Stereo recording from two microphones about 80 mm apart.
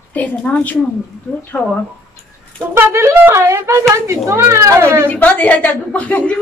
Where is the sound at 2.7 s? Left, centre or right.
Right.